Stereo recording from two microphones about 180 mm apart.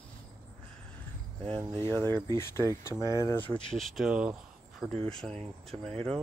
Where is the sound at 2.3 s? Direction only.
15° left (ahead or behind).